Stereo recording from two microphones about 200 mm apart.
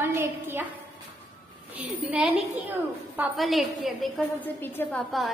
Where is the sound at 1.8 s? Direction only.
5° right (ahead or behind).